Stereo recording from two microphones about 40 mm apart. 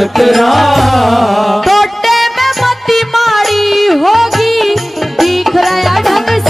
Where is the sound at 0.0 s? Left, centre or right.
Centre.